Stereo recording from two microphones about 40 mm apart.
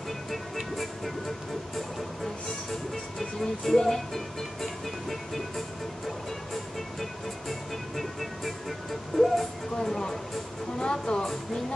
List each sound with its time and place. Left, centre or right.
0.7 s music: centre
2.7 s music: centre
7.0 s music: centre
9.8 s a sound: centre
10.8 s speech: left